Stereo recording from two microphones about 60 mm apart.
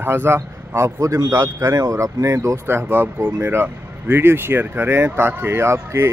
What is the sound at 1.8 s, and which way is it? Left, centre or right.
Speech, right.